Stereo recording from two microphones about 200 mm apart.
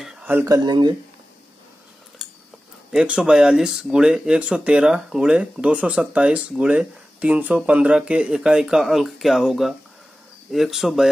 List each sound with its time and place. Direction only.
0.0 s a sound: 5° right (ahead or behind)
0.7 s speech: 20° right (ahead or behind)
2.9 s speech: 5° right (ahead or behind)